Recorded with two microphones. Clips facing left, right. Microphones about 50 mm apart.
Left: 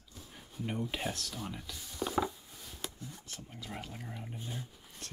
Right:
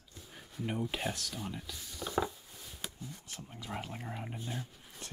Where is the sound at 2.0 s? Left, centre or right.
Centre.